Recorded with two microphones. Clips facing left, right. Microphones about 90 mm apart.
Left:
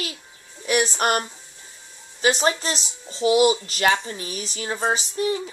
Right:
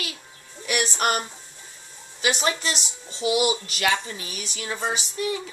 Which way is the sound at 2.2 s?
35° left (ahead or behind).